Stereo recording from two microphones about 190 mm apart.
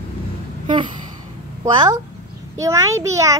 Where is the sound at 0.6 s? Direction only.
25° right (ahead or behind).